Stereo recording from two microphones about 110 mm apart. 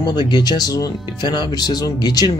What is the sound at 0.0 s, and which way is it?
Speech, 40° left (ahead or behind).